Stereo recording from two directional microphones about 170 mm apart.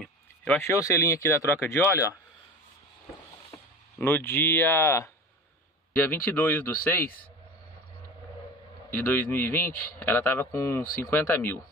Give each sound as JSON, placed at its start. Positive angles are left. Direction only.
{"t": 0.0, "sound": "speech", "side_deg": 10}
{"t": 4.0, "sound": "a man's voice", "side_deg": 15}
{"t": 8.9, "sound": "a man's voice", "side_deg": 10}